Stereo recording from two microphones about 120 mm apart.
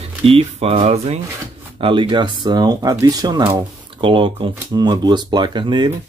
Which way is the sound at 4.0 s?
45° right (ahead or behind).